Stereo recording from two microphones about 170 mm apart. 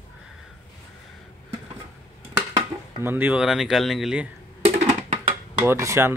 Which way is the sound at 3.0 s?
10° right (ahead or behind).